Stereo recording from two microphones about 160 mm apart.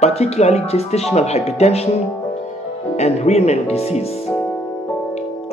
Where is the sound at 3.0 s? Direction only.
40° left (ahead or behind).